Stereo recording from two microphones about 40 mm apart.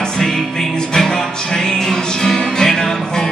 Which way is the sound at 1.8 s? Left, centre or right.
Centre.